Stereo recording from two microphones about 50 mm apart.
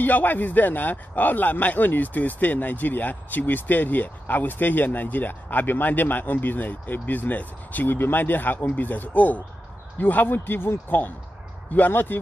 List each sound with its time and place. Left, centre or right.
0.0 s a man's voice: left